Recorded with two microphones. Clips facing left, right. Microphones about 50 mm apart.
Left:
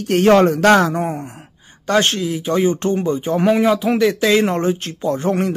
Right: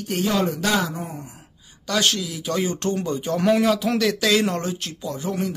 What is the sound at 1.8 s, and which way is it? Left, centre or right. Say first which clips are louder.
Speech: left 6 dB; left.